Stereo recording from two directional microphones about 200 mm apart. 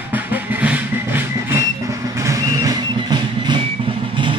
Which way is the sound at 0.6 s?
10° right (ahead or behind).